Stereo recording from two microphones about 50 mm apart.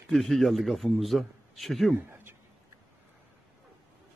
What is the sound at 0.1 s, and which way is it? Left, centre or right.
A man's voice, centre.